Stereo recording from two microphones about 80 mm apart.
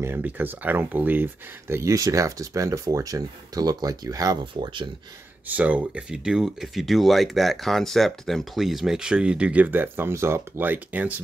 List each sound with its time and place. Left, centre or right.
0.0 s speech: right
5.5 s speech: centre